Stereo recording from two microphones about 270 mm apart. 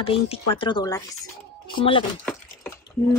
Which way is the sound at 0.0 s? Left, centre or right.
Centre.